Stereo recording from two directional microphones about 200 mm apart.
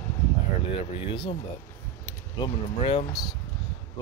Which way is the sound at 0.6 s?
25° left (ahead or behind).